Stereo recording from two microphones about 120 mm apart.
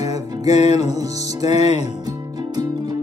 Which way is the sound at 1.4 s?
30° right (ahead or behind).